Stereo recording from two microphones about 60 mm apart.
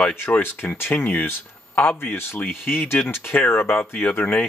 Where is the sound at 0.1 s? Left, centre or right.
Left.